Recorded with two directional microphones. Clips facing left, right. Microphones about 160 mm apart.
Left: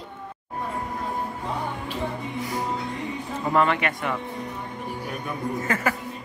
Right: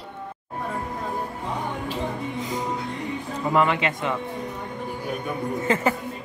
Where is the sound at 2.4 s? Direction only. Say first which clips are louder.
Left 2 dB; 20° right (ahead or behind).